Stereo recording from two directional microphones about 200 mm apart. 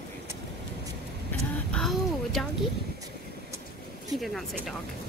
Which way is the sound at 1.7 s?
Centre (ahead or behind).